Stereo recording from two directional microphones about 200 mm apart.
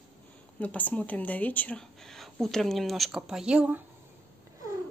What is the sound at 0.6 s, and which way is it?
Speech, 5° left (ahead or behind).